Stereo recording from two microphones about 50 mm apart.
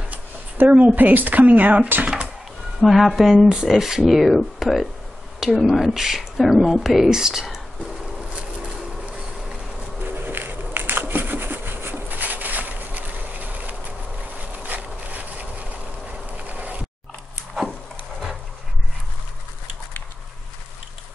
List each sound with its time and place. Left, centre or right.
0.7 s speech: right
2.8 s speech: centre
10.2 s a sound: right